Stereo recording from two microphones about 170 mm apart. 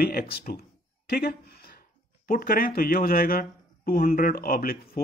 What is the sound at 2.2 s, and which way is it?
A man's voice, 60° left (ahead or behind).